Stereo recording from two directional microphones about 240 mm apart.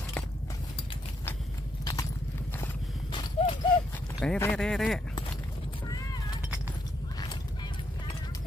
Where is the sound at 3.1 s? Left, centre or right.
Left.